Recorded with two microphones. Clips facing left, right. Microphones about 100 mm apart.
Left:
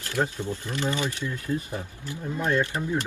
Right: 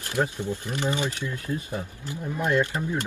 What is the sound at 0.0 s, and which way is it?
Speech, 20° right (ahead or behind).